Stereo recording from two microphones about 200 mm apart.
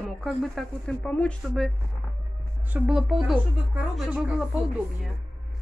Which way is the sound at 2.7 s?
5° right (ahead or behind).